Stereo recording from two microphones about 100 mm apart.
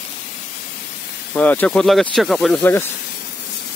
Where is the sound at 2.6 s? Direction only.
20° left (ahead or behind).